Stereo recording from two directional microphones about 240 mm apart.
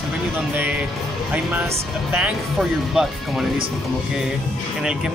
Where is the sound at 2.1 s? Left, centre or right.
Centre.